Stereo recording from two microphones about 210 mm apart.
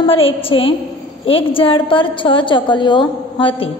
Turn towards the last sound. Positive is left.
turn(degrees=25)  # may be behind; listen again after turning